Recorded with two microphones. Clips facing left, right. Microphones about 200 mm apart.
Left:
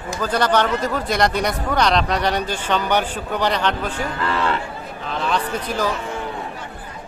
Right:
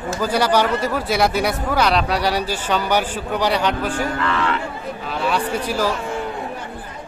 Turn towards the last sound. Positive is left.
turn(degrees=-10)  # may be behind; listen again after turning